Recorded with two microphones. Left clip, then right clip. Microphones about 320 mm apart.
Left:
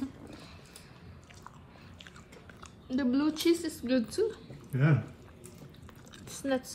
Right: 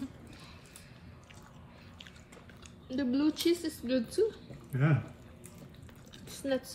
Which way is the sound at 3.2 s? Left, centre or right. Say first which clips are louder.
Right 1 dB; centre.